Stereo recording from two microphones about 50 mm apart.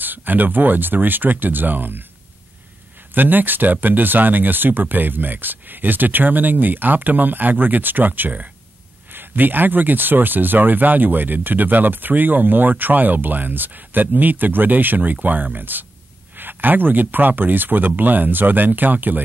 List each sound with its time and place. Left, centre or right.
0.0 s speech: right
3.2 s speech: right
9.1 s speech: right